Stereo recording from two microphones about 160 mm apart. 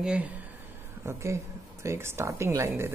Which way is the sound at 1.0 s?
20° right (ahead or behind).